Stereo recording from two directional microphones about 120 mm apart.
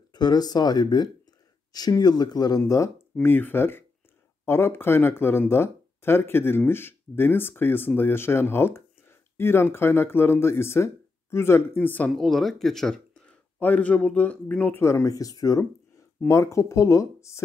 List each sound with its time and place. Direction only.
0.1 s speech: 35° left (ahead or behind); by 12.1 s 15° left (ahead or behind)
12.1 s speech: centre (ahead or behind); by 17.4 s 25° left (ahead or behind)